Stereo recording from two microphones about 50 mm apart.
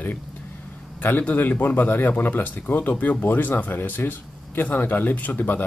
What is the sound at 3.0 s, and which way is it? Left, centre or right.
Speech, left.